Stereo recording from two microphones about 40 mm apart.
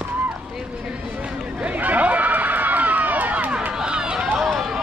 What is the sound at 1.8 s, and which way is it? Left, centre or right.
Run, right.